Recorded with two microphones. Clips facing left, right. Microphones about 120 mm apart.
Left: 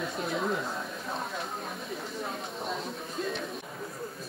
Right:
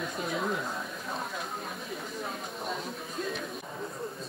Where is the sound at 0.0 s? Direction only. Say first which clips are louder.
Left 1 dB; centre (ahead or behind).